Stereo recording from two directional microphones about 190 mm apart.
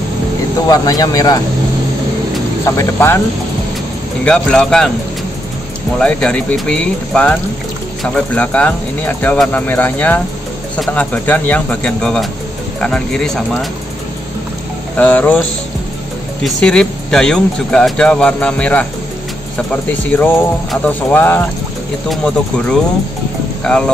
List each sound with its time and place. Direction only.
0.7 s speech: 20° left (ahead or behind)
2.6 s speech: 15° left (ahead or behind)
4.2 s speech: 5° left (ahead or behind)
5.9 s speech: 5° left (ahead or behind)
15.0 s speech: 10° left (ahead or behind)
16.4 s speech: 5° left (ahead or behind)